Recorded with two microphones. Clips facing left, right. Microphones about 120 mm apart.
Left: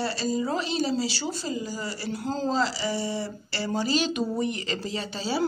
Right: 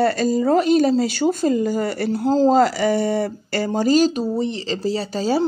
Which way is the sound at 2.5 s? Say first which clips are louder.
Right 10 dB; 55° right (ahead or behind).